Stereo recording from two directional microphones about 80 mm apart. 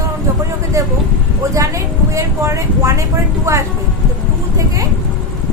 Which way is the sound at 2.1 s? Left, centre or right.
Right.